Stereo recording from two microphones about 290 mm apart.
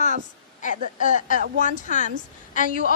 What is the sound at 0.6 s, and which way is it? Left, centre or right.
A woman's voice, left.